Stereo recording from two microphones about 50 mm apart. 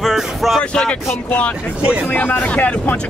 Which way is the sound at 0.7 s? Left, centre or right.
Centre.